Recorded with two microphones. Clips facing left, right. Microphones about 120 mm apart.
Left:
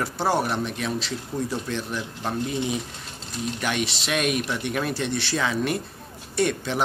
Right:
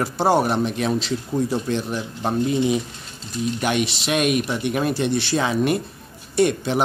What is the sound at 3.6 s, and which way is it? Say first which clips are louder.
Speech: right 4 dB; 15° right (ahead or behind).